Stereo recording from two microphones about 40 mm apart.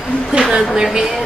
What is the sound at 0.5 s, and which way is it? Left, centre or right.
Speech, centre.